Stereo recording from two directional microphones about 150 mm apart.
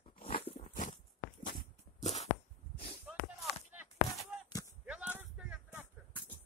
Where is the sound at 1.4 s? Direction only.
55° left (ahead or behind).